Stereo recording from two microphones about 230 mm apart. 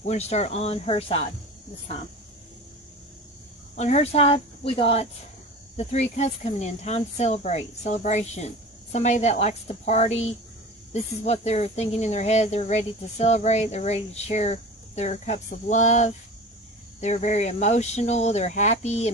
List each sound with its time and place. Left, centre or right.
0.0 s speech: left
3.7 s speech: left